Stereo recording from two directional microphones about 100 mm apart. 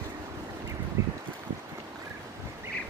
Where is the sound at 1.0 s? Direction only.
30° right (ahead or behind).